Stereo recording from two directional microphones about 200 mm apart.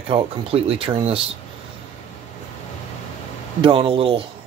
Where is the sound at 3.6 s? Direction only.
25° right (ahead or behind).